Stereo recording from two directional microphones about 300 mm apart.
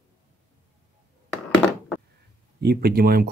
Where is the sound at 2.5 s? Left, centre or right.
Right.